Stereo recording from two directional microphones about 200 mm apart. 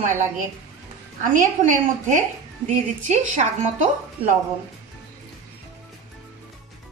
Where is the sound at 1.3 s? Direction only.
40° right (ahead or behind).